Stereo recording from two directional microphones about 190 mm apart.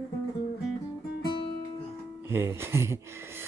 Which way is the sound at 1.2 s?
25° left (ahead or behind).